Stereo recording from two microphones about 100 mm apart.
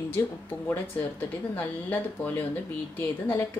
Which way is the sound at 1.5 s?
15° left (ahead or behind).